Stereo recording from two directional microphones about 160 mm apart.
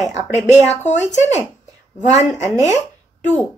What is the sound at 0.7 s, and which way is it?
Speech, 45° left (ahead or behind).